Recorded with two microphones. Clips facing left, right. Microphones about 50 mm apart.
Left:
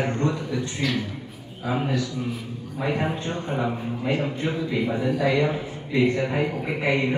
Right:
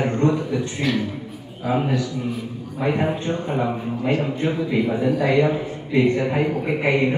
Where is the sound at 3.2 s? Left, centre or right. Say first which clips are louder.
Right 4 dB; centre.